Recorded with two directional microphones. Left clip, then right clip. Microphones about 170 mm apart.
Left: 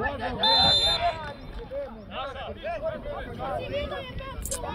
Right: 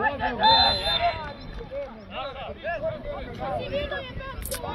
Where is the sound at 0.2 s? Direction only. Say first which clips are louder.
Right 2 dB; 60° left (ahead or behind).